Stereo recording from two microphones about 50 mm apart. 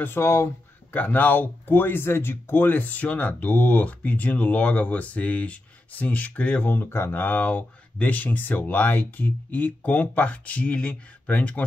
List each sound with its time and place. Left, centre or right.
0.0 s speech: left
0.9 s speech: left
6.7 s speech: left
7.2 s speech: left